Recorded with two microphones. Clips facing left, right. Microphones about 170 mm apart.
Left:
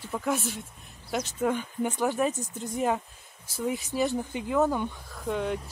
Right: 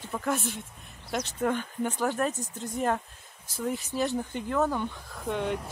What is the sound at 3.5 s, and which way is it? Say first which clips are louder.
Speech: left 1 dB; 10° left (ahead or behind).